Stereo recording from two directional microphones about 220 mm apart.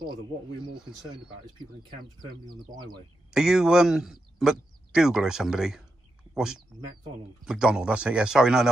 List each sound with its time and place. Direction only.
2.7 s speech: 20° right (ahead or behind)
3.3 s speech: centre (ahead or behind)